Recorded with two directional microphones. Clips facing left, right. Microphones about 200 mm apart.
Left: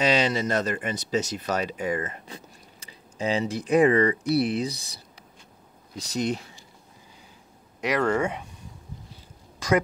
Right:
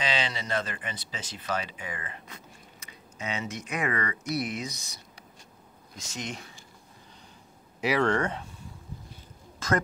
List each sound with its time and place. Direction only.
0.0 s speech: 45° left (ahead or behind)
2.2 s speech: 30° left (ahead or behind)
7.8 s speech: centre (ahead or behind)